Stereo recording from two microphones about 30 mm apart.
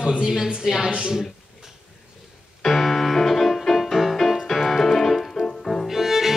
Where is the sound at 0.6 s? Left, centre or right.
Centre.